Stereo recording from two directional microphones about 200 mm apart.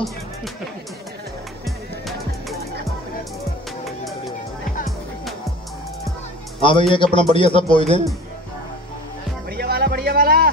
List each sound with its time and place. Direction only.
6.6 s a man's voice: 25° left (ahead or behind)
9.5 s music: 50° right (ahead or behind)